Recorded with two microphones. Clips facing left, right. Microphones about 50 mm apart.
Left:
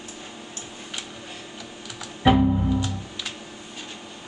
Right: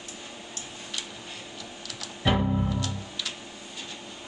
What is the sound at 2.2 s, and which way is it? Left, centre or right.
Music, centre.